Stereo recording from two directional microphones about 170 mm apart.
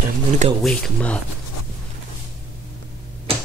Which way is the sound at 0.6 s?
5° left (ahead or behind).